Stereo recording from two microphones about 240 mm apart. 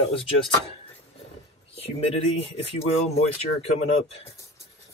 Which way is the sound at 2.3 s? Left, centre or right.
Left.